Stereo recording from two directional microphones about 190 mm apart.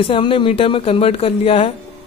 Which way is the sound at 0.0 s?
30° left (ahead or behind).